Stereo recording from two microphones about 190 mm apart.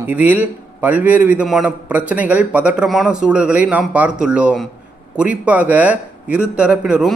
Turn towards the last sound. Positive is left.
turn(degrees=-5)  # may be behind; listen again after turning